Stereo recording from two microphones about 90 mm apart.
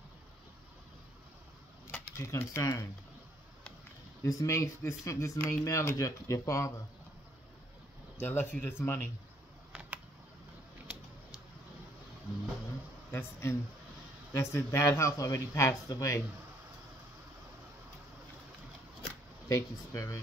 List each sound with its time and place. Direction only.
1.9 s speech: 30° left (ahead or behind)
4.2 s speech: 35° left (ahead or behind)
8.2 s speech: 25° left (ahead or behind)
9.7 s a sound: 15° right (ahead or behind)
13.1 s speech: 30° left (ahead or behind)
19.5 s speech: 35° left (ahead or behind)